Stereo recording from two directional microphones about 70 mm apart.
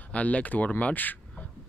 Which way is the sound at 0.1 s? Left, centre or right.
Left.